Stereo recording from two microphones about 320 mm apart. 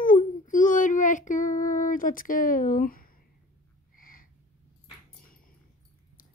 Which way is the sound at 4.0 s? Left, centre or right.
Left.